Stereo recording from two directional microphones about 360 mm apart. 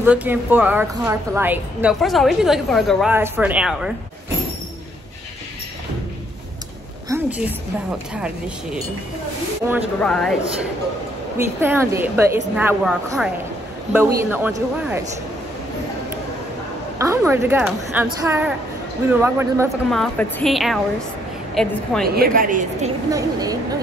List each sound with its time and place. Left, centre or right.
0.0 s a woman's voice: centre
7.1 s a woman's voice: centre
9.7 s a woman's voice: centre
11.3 s a woman's voice: centre
17.0 s a woman's voice: centre
22.1 s a woman's voice: right
23.1 s a woman's voice: centre